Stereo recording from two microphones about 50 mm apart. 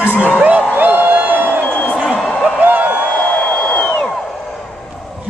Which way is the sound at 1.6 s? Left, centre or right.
Left.